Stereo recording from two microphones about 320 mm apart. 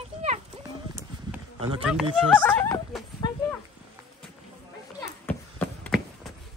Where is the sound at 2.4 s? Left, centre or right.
Centre.